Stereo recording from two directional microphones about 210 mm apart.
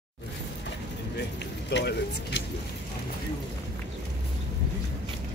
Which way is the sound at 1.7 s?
55° left (ahead or behind).